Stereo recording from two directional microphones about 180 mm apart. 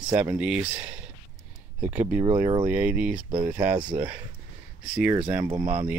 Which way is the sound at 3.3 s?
50° right (ahead or behind).